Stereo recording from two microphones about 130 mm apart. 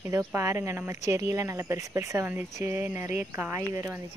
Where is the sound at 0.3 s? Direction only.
20° right (ahead or behind).